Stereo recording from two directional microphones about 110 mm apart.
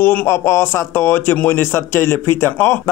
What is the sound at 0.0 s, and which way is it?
A man's voice, 15° left (ahead or behind).